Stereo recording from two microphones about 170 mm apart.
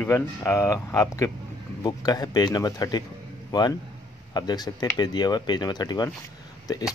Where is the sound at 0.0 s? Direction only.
15° left (ahead or behind).